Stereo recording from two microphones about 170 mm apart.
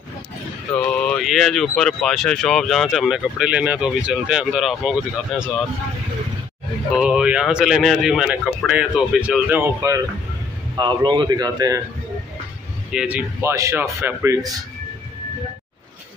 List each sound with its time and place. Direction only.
0.7 s speech: 5° left (ahead or behind)
7.0 s speech: 5° right (ahead or behind)
10.8 s a man's voice: 25° right (ahead or behind)
12.9 s speech: 10° right (ahead or behind)